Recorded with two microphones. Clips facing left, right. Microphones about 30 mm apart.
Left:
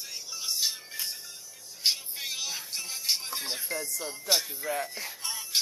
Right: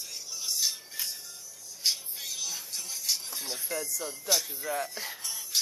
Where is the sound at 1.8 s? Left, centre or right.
Left.